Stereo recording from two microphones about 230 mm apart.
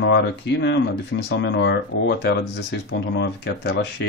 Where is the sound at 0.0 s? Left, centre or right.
Left.